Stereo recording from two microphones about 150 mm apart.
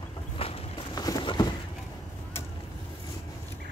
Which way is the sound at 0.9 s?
25° left (ahead or behind).